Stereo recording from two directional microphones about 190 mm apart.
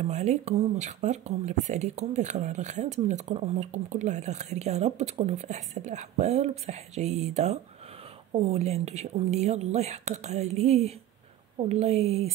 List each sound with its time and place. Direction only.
0.0 s speech: 35° right (ahead or behind)